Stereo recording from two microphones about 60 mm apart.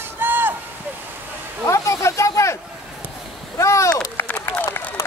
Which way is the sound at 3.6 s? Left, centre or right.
Left.